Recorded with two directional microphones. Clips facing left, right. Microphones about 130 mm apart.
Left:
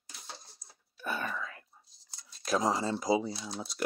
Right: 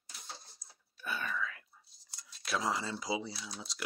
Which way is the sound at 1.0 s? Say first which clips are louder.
Left 2 dB; 45° left (ahead or behind).